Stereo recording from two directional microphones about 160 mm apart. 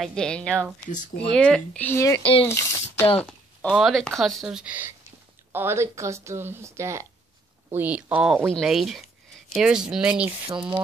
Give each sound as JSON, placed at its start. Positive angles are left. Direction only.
{"t": 0.0, "sound": "speech", "side_deg": 5}
{"t": 3.2, "sound": "a sound", "side_deg": 10}
{"t": 3.7, "sound": "speech", "side_deg": 0}